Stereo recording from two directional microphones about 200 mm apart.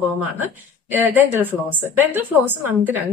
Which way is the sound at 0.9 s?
10° right (ahead or behind).